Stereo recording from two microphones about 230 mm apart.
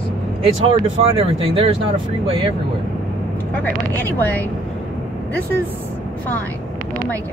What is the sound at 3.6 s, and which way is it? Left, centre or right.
Speech, centre.